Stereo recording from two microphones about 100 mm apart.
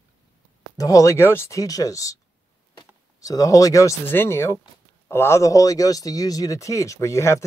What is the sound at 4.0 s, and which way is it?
Speech, 20° left (ahead or behind).